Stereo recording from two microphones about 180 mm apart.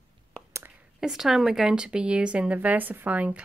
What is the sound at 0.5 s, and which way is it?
Whispering, 15° right (ahead or behind).